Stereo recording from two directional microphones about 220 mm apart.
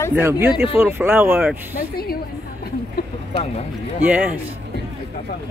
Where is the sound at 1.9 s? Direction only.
45° left (ahead or behind).